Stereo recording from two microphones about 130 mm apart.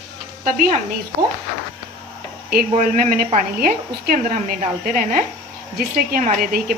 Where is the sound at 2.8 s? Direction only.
85° right.